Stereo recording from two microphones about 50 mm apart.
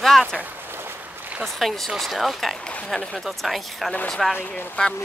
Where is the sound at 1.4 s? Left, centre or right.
Centre.